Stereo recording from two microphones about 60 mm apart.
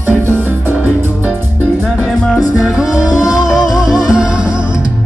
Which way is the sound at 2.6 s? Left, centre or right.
Centre.